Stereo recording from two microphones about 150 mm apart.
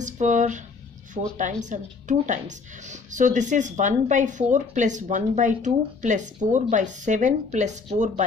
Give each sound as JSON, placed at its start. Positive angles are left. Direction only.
{"t": 0.0, "sound": "speech", "side_deg": -55}